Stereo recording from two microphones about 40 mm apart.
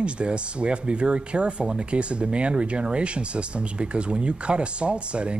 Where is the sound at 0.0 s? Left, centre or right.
Right.